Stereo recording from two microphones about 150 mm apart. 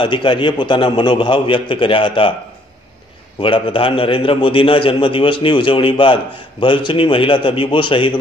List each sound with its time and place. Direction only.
0.0 s a man's voice: 35° left (ahead or behind)
3.3 s a man's voice: 35° left (ahead or behind)